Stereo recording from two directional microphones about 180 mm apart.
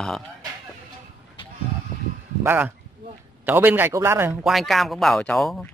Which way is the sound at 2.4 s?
10° right (ahead or behind).